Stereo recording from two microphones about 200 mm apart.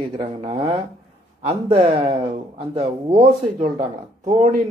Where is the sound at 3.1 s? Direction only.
40° right (ahead or behind).